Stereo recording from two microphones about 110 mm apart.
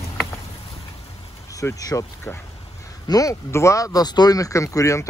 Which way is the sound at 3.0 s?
35° left (ahead or behind).